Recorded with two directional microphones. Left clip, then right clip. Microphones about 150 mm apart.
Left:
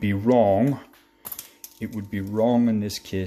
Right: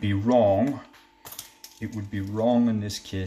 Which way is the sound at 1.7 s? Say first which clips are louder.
Left 2 dB; 50° left (ahead or behind).